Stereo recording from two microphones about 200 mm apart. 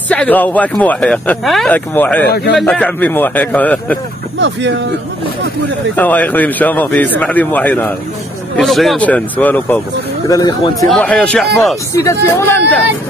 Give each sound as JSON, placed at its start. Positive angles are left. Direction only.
{"t": 0.1, "sound": "speech", "side_deg": 5}
{"t": 2.2, "sound": "speech", "side_deg": 55}
{"t": 2.5, "sound": "speech", "side_deg": 5}
{"t": 4.4, "sound": "speech", "side_deg": -65}
{"t": 5.9, "sound": "speech", "side_deg": 10}
{"t": 10.3, "sound": "a man's voice", "side_deg": 20}
{"t": 10.8, "sound": "speech", "side_deg": 5}
{"t": 11.9, "sound": "speech", "side_deg": 15}